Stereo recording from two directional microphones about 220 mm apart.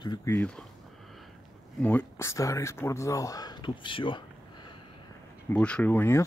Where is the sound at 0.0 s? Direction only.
15° left (ahead or behind).